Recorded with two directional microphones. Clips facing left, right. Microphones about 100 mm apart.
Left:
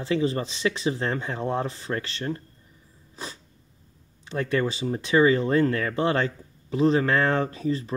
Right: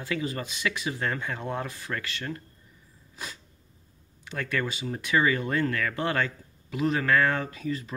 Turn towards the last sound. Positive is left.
turn(degrees=35)  # may be behind; listen again after turning